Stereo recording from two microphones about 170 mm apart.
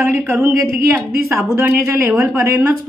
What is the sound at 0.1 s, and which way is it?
A woman's voice, 15° right (ahead or behind).